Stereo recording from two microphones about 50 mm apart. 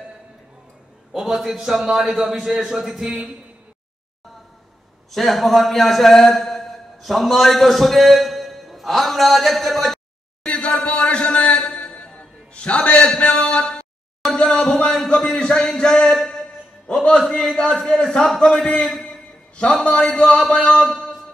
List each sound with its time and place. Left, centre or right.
1.1 s a man's voice: centre
5.1 s a man's voice: centre
10.4 s a sound: left
12.1 s music: centre
14.3 s a sound: centre
16.9 s a man's voice: left